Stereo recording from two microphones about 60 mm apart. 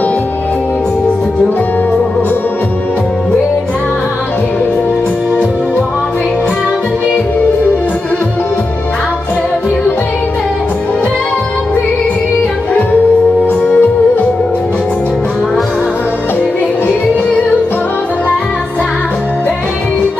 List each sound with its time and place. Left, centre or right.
13.5 s music: left